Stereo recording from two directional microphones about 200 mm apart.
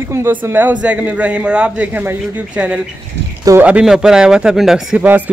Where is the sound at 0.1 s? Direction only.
10° right (ahead or behind).